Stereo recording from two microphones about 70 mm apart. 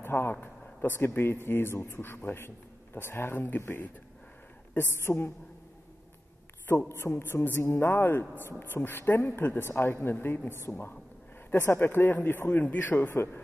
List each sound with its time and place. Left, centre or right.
0.0 s speech: left
6.9 s speech: left
10.7 s a woman's voice: centre
11.5 s a man's voice: left